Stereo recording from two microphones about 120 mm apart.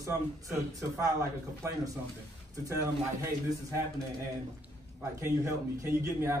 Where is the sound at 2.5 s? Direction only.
25° right (ahead or behind).